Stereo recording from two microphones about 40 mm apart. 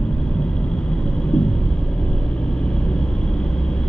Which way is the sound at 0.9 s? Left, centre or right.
Left.